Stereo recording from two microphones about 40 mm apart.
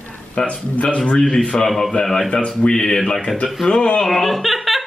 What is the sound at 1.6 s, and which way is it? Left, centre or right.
Speech, centre.